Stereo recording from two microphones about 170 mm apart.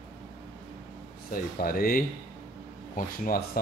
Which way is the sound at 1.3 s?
60° left (ahead or behind).